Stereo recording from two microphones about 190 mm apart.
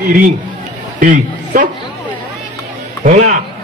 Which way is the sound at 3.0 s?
50° right (ahead or behind).